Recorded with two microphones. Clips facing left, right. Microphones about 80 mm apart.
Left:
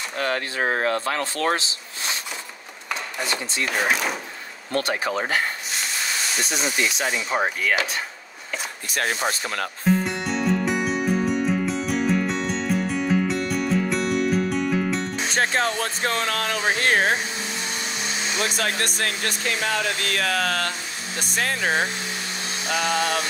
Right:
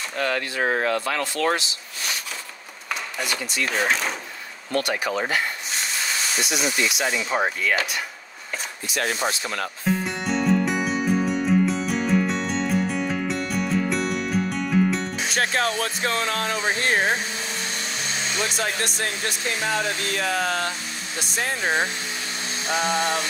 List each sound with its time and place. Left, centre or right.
0.2 s speech: left
2.9 s a sound: left
3.6 s speech: centre
4.7 s speech: left
7.1 s speech: centre
9.3 s music: left
9.8 s music: centre
15.3 s speech: left
16.4 s music: left
18.6 s speech: left
22.7 s a sound: right